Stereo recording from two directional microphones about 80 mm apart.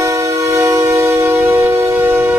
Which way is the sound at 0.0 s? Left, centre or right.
Right.